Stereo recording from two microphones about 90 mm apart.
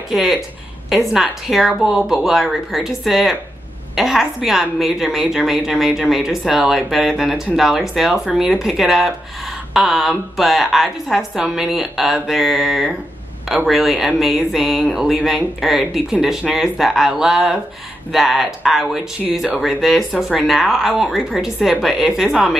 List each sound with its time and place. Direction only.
0.1 s speech: centre (ahead or behind)